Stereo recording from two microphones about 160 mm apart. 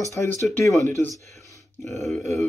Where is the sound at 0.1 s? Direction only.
15° left (ahead or behind).